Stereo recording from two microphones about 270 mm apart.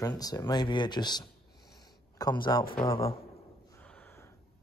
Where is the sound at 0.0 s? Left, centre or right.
Centre.